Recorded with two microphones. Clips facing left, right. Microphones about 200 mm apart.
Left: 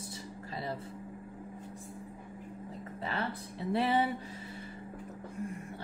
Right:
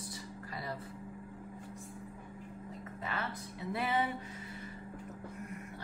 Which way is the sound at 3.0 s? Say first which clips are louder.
Left 4 dB; 30° left (ahead or behind).